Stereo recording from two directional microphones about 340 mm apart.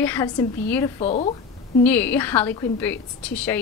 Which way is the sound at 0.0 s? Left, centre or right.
Centre.